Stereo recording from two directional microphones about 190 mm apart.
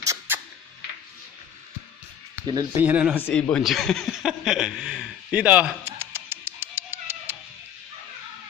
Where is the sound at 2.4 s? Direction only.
20° right (ahead or behind).